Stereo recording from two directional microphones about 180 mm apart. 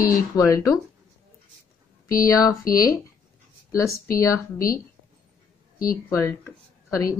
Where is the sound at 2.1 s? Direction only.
20° left (ahead or behind).